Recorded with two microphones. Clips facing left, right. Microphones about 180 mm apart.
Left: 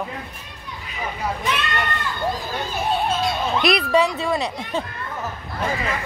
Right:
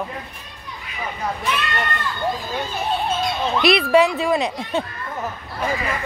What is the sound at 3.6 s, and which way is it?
Speech, 5° right (ahead or behind).